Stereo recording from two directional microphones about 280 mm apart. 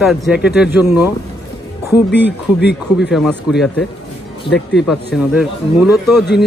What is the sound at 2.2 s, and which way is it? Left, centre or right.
Speech, left.